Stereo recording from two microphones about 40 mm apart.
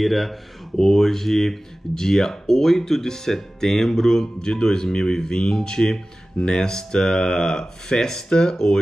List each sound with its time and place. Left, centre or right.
0.0 s speech: centre